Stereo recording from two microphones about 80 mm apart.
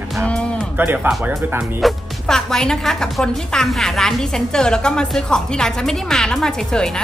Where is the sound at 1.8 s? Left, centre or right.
Centre.